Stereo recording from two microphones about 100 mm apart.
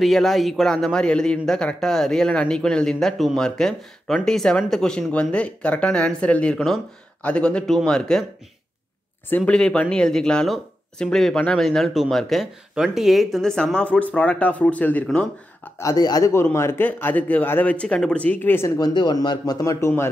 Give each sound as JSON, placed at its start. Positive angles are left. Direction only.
{"t": 0.0, "sound": "speech", "side_deg": 0}
{"t": 9.5, "sound": "speech", "side_deg": 10}
{"t": 15.8, "sound": "a man's voice", "side_deg": 40}
{"t": 16.5, "sound": "speech", "side_deg": 25}
{"t": 18.8, "sound": "a man's voice", "side_deg": 45}